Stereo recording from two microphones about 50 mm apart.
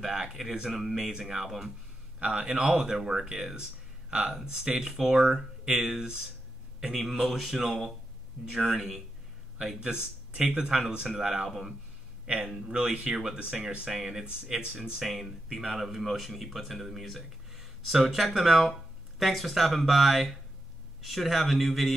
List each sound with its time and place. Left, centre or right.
0.0 s speech: centre
2.1 s a man's voice: right
4.8 s speech: centre
6.9 s speech: centre
12.6 s speech: centre